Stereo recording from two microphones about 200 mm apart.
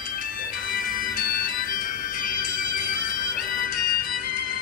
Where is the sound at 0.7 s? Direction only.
45° left (ahead or behind).